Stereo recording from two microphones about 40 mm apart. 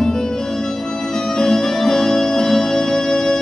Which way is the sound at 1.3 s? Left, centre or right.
Centre.